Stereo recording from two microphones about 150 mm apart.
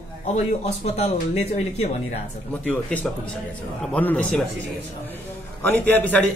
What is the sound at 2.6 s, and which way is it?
A man's voice, 10° left (ahead or behind).